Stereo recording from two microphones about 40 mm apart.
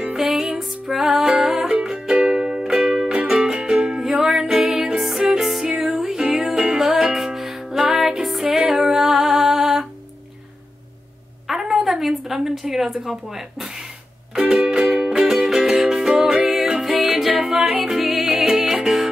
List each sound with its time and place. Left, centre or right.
0.1 s music: centre
11.4 s a sound: centre
12.4 s a woman's voice: centre
14.5 s music: centre